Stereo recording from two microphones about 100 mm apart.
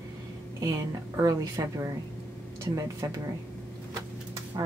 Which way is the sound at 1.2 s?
35° right (ahead or behind).